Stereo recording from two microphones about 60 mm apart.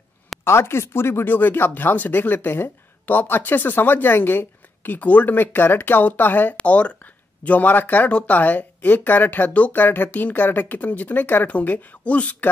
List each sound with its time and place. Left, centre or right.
0.4 s speech: left
6.5 s speech: left